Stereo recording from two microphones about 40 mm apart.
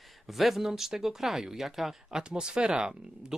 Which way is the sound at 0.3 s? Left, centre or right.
Centre.